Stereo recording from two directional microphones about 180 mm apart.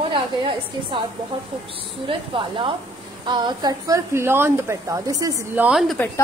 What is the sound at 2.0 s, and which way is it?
A woman's voice, 30° right (ahead or behind).